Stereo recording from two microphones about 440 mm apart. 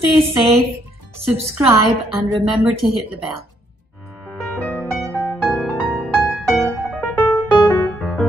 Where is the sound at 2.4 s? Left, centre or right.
Centre.